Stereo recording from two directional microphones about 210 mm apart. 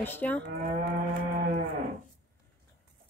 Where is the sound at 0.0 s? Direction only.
10° left (ahead or behind).